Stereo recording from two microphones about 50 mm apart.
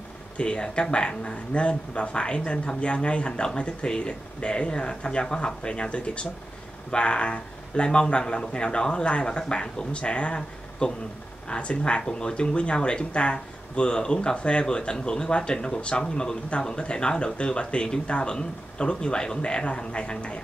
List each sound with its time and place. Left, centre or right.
0.4 s speech: centre